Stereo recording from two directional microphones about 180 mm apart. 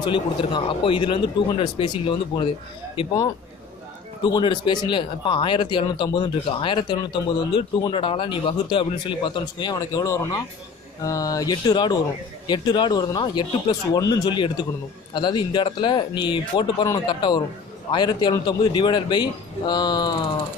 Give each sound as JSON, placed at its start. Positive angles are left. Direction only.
{"t": 0.0, "sound": "speech", "side_deg": 25}
{"t": 4.2, "sound": "speech", "side_deg": 25}